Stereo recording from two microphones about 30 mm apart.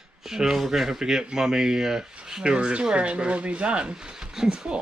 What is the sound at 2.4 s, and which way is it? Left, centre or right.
Speech, right.